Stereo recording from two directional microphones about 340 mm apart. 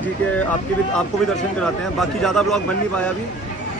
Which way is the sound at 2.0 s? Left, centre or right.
Centre.